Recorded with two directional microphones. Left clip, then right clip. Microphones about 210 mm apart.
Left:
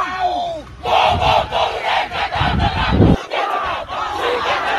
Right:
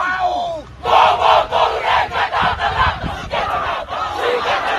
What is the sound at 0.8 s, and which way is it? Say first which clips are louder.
Battle cry: right 3 dB; 5° right (ahead or behind).